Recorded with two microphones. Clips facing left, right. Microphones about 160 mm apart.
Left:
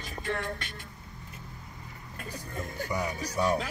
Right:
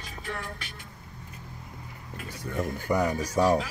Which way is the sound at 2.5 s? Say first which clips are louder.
Right 7 dB; 50° right (ahead or behind).